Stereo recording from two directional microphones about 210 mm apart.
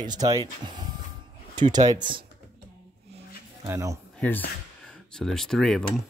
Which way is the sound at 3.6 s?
15° right (ahead or behind).